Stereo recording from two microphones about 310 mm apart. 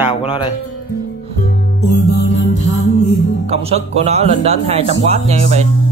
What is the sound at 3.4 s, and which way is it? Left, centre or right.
Speech, centre.